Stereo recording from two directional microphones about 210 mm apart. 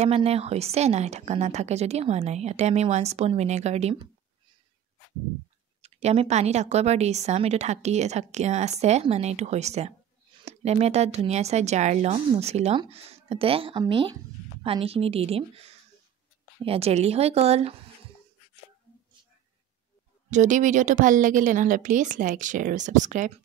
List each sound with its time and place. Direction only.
0.0 s speech: 30° right (ahead or behind)
5.8 s speech: 30° right (ahead or behind)
20.2 s speech: 35° right (ahead or behind)